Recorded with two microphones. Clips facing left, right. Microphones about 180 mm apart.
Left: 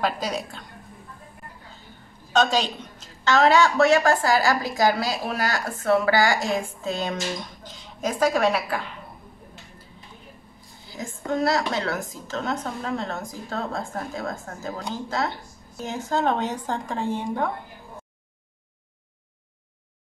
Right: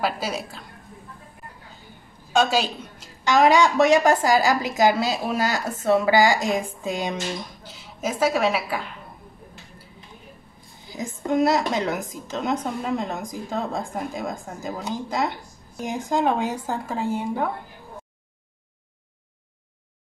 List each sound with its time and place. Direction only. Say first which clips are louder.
0.0 s a woman's voice: even; 5° right (ahead or behind)
2.3 s a woman's voice: right 1 dB; 10° right (ahead or behind)
11.0 s a woman's voice: right 4 dB; 20° right (ahead or behind)